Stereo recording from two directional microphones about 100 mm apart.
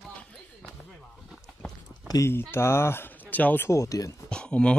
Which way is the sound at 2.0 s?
35° left (ahead or behind).